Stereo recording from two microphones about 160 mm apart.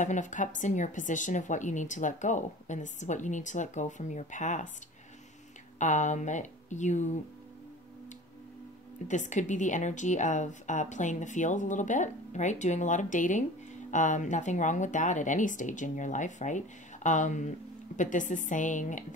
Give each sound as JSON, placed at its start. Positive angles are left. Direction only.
{"t": 0.0, "sound": "a woman's voice", "side_deg": 50}
{"t": 5.8, "sound": "a woman's voice", "side_deg": 50}
{"t": 9.0, "sound": "a woman's voice", "side_deg": 50}